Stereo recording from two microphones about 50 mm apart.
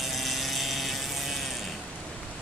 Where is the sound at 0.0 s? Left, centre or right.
Centre.